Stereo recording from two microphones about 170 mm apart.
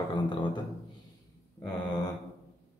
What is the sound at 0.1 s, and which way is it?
Beatboxing, 30° left (ahead or behind).